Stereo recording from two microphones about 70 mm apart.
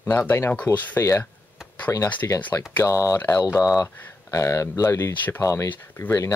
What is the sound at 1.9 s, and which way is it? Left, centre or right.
Speech, left.